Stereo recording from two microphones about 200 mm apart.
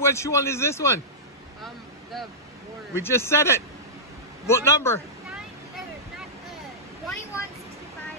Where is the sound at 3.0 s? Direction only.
10° left (ahead or behind).